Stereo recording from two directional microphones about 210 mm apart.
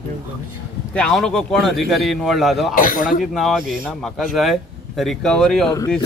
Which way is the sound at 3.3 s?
Centre (ahead or behind).